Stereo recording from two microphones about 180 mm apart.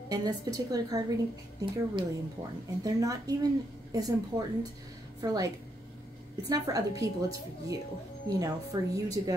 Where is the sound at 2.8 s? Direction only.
20° right (ahead or behind).